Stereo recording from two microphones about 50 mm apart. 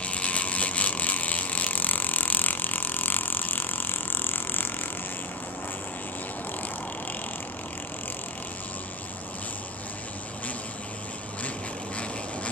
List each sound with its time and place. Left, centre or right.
0.0 s ratchet: left